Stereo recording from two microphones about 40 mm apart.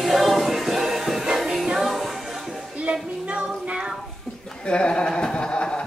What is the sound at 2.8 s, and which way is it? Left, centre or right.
Music, right.